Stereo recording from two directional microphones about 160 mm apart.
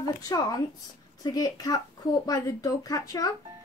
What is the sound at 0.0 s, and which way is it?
Speech, 25° left (ahead or behind).